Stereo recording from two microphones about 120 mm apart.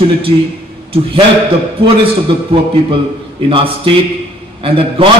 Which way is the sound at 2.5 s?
50° right (ahead or behind).